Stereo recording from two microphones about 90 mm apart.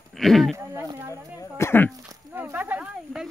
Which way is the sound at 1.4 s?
25° left (ahead or behind).